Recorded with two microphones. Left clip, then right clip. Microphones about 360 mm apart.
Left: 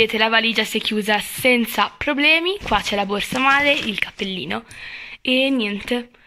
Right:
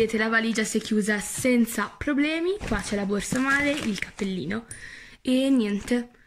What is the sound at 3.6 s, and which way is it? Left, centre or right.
Speech, left.